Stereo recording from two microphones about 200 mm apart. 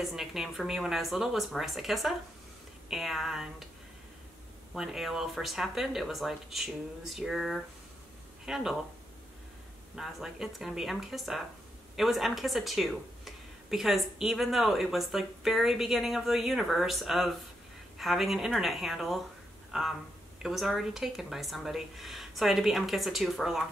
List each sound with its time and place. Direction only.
0.0 s speech: centre (ahead or behind)
4.7 s speech: centre (ahead or behind)
9.9 s speech: centre (ahead or behind)
20.4 s speech: centre (ahead or behind)